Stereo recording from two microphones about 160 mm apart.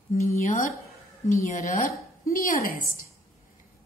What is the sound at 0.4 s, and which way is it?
A woman's voice, 55° left (ahead or behind).